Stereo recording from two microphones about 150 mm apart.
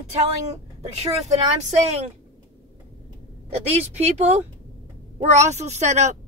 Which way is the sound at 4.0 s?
45° right (ahead or behind).